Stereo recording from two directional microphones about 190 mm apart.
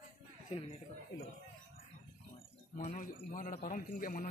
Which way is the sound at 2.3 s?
35° left (ahead or behind).